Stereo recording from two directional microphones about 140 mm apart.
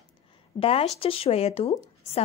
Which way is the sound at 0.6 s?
45° left (ahead or behind).